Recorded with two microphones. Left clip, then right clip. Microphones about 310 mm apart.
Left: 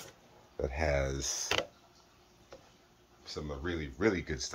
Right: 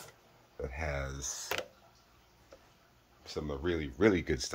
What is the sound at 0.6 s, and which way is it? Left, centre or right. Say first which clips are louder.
Speech: left 6 dB; left.